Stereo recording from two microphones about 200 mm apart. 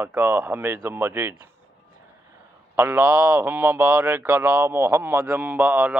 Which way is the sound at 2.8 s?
10° right (ahead or behind).